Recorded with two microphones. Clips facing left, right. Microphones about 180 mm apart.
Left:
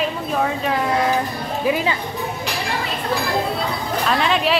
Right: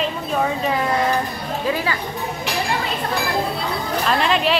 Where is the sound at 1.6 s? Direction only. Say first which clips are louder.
Left 3 dB; 20° left (ahead or behind).